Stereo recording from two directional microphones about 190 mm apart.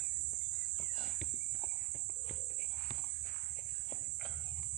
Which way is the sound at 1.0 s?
Centre (ahead or behind).